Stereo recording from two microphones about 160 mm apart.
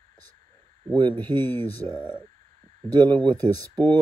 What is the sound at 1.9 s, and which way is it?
Speech, 30° right (ahead or behind).